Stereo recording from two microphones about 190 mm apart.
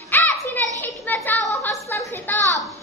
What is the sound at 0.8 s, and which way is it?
Children playing, 10° left (ahead or behind).